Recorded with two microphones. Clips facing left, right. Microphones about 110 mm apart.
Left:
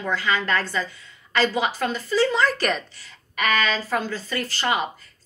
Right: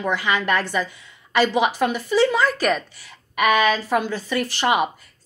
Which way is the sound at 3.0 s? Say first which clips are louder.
Right 6 dB; 15° right (ahead or behind).